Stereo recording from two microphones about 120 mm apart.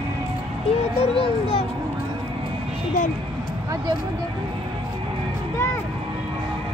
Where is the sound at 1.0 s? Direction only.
50° left (ahead or behind).